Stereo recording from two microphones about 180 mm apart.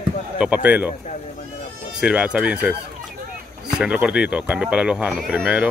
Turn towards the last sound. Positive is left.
turn(degrees=-5)  # may be behind; listen again after turning